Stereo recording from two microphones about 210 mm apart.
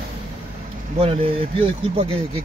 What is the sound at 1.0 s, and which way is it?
Speech, 25° right (ahead or behind).